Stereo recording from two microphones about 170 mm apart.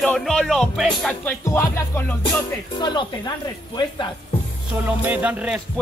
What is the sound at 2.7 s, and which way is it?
Music, 25° left (ahead or behind).